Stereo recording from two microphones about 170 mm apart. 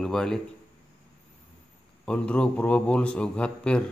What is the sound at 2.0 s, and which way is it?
A man's voice, 5° left (ahead or behind).